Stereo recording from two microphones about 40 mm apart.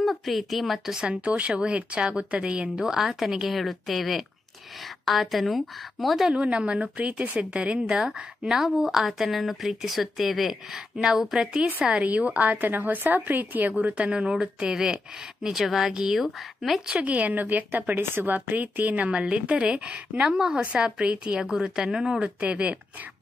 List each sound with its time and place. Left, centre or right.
0.0 s speech: centre
0.9 s speech: right
2.8 s a woman's voice: centre
3.4 s speech: centre
6.3 s speech: right
7.8 s a woman's voice: centre
12.0 s a woman's voice: right
13.7 s speech: right
14.7 s a woman's voice: centre
17.0 s a woman's voice: right
21.4 s speech: centre
22.2 s speech: right